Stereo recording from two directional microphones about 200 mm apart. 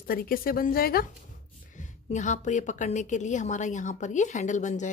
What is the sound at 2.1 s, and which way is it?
A woman's voice, 35° left (ahead or behind).